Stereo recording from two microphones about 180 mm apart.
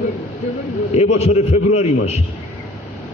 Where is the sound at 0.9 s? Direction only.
35° left (ahead or behind).